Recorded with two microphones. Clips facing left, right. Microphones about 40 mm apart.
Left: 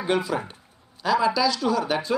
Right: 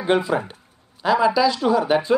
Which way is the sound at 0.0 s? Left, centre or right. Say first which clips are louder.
Right 4 dB; right.